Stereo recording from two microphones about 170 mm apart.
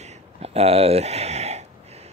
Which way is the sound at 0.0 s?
35° right (ahead or behind).